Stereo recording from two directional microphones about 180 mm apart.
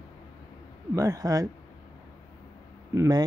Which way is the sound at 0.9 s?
15° right (ahead or behind).